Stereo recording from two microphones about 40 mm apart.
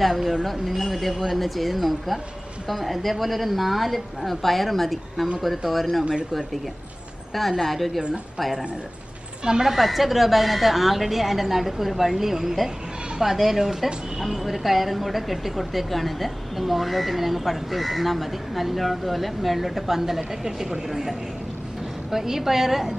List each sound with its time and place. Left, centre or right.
0.0 s a woman's voice: centre
7.3 s a woman's voice: centre
9.4 s a woman's voice: centre
9.7 s a woman's voice: centre